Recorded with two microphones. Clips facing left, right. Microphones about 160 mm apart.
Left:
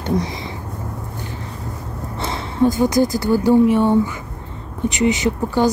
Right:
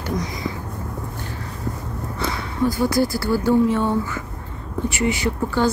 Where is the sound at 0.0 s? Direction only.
25° left (ahead or behind).